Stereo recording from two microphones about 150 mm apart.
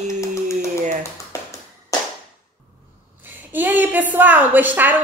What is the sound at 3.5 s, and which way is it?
A woman's voice, 10° right (ahead or behind).